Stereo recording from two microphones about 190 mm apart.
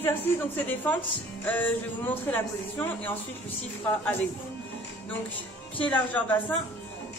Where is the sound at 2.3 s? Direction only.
10° left (ahead or behind).